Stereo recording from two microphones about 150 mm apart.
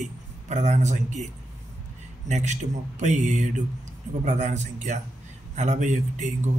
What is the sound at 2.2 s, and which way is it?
A man's voice, 50° right (ahead or behind).